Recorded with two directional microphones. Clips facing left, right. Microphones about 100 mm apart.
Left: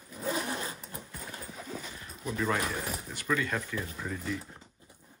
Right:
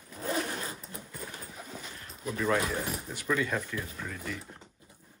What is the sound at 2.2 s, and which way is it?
Speech, centre (ahead or behind).